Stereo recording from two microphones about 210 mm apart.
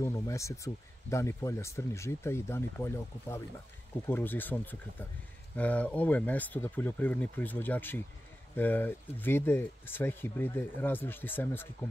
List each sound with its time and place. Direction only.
0.0 s speech: 15° left (ahead or behind)